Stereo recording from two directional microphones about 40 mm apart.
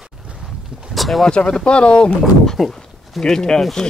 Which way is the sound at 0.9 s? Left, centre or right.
Centre.